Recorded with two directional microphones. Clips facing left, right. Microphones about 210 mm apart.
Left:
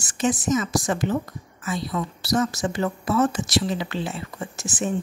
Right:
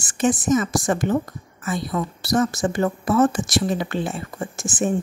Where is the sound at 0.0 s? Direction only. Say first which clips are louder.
Right 3 dB; 50° right (ahead or behind).